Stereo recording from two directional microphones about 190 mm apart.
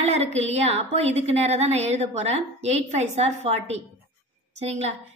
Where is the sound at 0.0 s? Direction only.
35° right (ahead or behind).